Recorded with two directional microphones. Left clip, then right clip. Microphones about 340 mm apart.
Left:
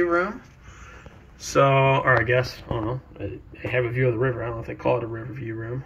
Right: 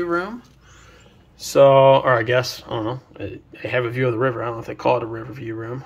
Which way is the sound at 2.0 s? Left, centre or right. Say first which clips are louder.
Right 2 dB; right.